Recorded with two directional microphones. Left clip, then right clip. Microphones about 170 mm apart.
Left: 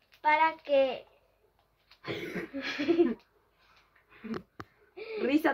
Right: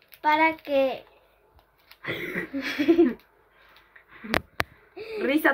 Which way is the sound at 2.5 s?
55° right (ahead or behind).